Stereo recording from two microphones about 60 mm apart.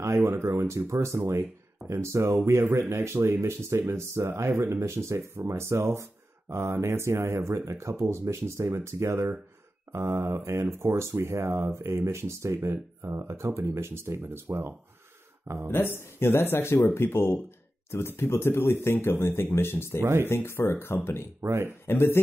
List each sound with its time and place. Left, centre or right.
0.0 s speech: right
15.7 s speech: left
20.0 s speech: right
20.2 s speech: left
21.4 s speech: right
21.8 s speech: left